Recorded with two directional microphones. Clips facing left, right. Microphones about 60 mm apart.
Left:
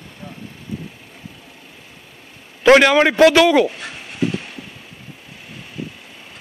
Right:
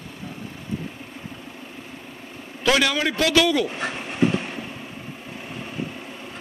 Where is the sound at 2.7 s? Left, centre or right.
Left.